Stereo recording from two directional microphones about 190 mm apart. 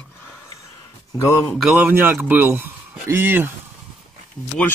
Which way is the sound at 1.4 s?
Centre (ahead or behind).